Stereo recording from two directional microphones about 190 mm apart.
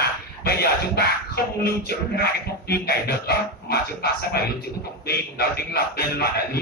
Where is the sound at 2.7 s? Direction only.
55° left (ahead or behind).